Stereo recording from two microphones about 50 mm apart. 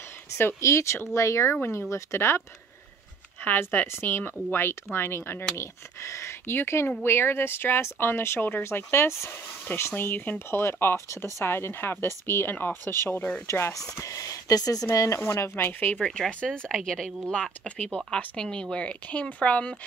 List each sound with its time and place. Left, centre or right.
0.6 s speech: left
3.4 s speech: left
3.8 s speech: left
5.6 s speech: left
8.6 s speech: left
9.9 s speech: left
13.5 s speech: left
14.9 s speech: left
15.2 s speech: left
16.0 s speech: centre
17.3 s speech: left